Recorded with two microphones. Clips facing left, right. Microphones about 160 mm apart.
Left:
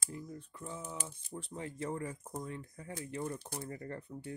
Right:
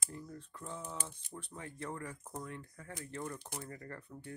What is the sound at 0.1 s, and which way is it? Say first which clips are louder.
Speech: left 3 dB; 15° left (ahead or behind).